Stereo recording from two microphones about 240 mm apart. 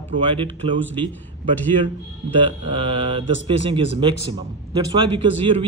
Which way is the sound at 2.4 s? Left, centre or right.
Right.